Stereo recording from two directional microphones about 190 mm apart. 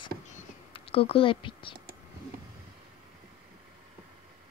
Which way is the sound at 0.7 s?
30° left (ahead or behind).